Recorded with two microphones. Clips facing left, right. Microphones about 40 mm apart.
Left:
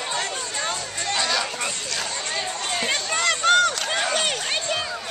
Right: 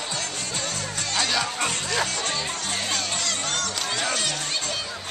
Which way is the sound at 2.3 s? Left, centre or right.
Left.